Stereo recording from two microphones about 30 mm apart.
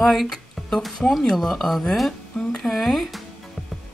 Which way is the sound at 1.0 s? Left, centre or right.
Left.